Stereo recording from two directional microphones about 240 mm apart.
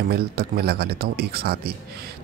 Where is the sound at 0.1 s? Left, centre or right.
Right.